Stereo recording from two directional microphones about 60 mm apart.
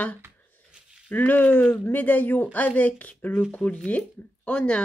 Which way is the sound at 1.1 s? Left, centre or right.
Left.